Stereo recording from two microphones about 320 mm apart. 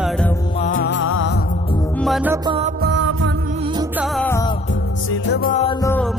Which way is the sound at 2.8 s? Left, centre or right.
Right.